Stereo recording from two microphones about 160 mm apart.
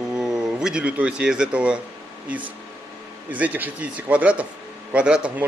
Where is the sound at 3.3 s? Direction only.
10° right (ahead or behind).